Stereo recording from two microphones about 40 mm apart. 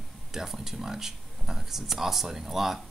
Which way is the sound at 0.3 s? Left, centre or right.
Centre.